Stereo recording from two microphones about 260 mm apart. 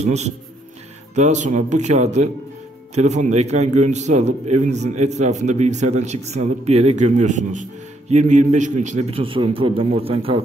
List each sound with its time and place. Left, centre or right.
0.0 s a man's voice: right